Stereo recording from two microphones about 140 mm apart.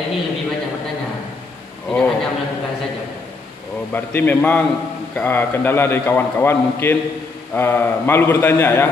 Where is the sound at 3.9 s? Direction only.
15° left (ahead or behind).